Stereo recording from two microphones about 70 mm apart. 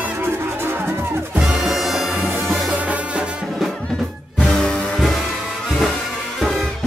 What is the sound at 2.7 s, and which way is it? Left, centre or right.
Music, right.